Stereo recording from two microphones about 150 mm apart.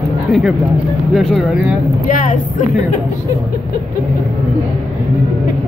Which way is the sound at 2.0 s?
60° left (ahead or behind).